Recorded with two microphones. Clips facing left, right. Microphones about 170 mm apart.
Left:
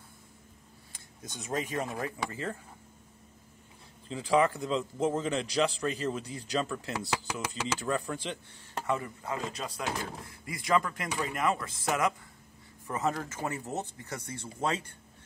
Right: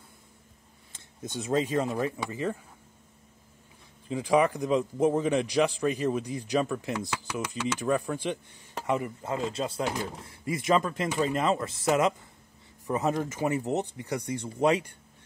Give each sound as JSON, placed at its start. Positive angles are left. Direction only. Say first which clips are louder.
{"t": 0.9, "sound": "speech", "louder": "right 9 dB", "side_deg": -30}
{"t": 4.1, "sound": "a man's voice", "louder": "right 2 dB", "side_deg": -15}